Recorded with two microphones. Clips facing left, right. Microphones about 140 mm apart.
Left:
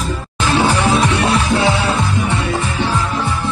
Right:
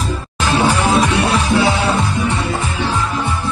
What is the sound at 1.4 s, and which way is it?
Music, 25° left (ahead or behind).